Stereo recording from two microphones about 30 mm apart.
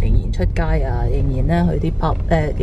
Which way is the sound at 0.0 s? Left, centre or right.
Centre.